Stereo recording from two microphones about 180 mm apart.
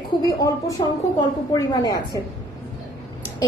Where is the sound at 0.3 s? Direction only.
20° left (ahead or behind).